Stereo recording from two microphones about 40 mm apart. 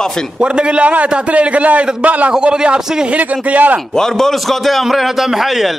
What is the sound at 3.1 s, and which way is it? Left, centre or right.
Speech, right.